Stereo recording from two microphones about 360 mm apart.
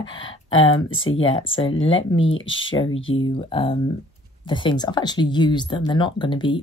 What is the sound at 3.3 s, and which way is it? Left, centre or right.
Speech, centre.